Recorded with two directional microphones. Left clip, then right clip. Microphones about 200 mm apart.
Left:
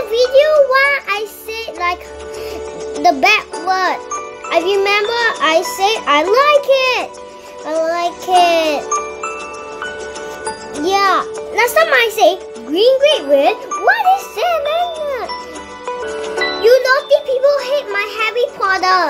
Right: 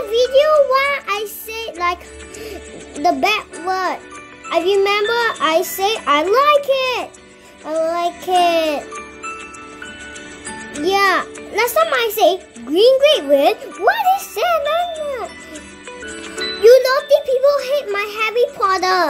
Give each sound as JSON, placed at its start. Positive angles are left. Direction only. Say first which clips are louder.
{"t": 0.1, "sound": "child singing", "louder": "left 2 dB", "side_deg": -10}
{"t": 3.0, "sound": "a child's voice", "louder": "left 4 dB", "side_deg": -10}
{"t": 10.8, "sound": "a child's voice", "louder": "left 2 dB", "side_deg": -5}
{"t": 13.8, "sound": "jingle", "louder": "left 2 dB", "side_deg": -15}
{"t": 16.6, "sound": "a child's voice", "louder": "right 1 dB", "side_deg": -20}